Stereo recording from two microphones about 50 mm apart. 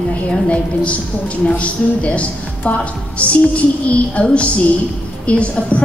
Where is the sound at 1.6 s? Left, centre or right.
Left.